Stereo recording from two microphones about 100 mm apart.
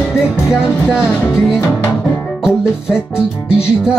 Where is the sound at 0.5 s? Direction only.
5° right (ahead or behind).